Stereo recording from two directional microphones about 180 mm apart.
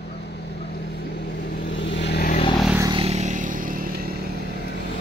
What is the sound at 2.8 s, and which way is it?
Vehicle, 25° right (ahead or behind).